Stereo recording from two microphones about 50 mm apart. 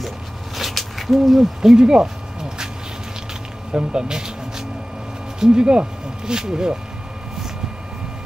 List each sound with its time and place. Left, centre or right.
0.6 s owl: centre
1.8 s speech: centre
3.7 s speech: centre